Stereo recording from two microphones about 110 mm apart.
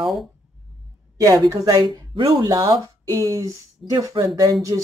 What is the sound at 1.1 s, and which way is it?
Speech, 30° right (ahead or behind).